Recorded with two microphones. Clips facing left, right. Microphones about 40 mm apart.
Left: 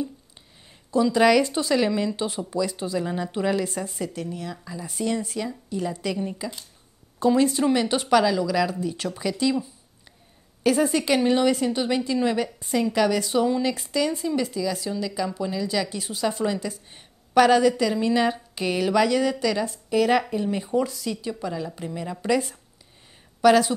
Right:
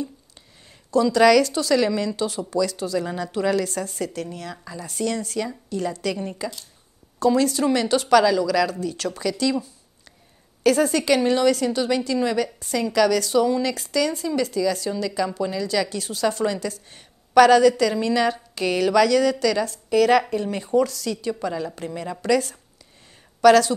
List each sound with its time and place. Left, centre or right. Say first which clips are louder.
0.9 s a woman's voice: right 3 dB; left
21.3 s speech: right 3 dB; centre
22.2 s a woman's voice: right 3 dB; left